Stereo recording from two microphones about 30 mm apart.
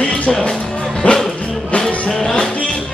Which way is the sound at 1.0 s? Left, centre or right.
Left.